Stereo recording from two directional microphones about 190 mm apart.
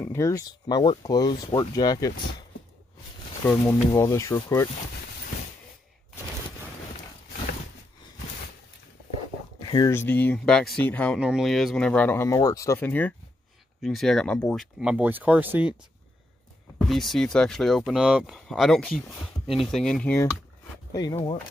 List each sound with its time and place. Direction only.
0.0 s speech: 15° left (ahead or behind)
3.4 s speech: 10° left (ahead or behind)
9.6 s speech: 25° left (ahead or behind); by 11.1 s 5° left (ahead or behind)
11.1 s speech: 5° right (ahead or behind)
16.7 s speech: centre (ahead or behind)
20.9 s speech: 20° left (ahead or behind)